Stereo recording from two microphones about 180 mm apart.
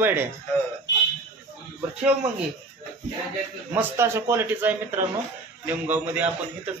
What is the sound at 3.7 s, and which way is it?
A man's voice, 15° right (ahead or behind).